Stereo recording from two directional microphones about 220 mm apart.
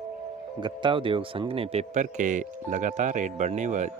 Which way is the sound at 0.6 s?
20° right (ahead or behind).